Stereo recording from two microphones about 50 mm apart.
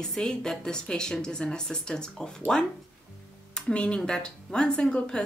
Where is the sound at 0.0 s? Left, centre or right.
Centre.